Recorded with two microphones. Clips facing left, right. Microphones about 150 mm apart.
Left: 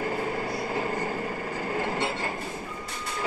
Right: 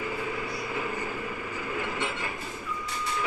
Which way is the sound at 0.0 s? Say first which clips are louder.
Left 4 dB; 45° left (ahead or behind).